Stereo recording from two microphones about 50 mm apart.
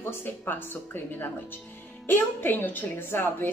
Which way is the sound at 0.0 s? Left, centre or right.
Left.